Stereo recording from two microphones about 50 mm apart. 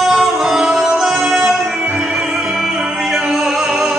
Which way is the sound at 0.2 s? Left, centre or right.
Centre.